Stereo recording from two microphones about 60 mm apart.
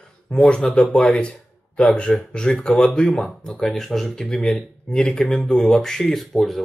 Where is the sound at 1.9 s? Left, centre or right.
Centre.